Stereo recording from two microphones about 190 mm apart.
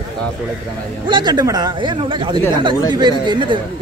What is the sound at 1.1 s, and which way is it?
A man's voice, 20° right (ahead or behind).